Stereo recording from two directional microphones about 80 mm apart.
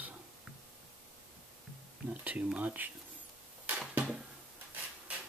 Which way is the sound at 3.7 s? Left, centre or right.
Centre.